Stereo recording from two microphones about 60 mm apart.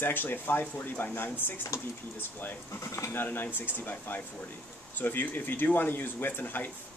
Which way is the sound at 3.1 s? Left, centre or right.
Left.